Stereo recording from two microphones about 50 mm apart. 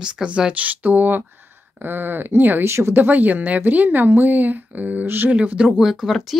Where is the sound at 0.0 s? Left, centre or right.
Centre; by 2.6 s right.